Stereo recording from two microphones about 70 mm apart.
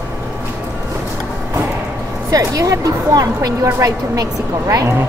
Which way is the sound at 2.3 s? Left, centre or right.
Right.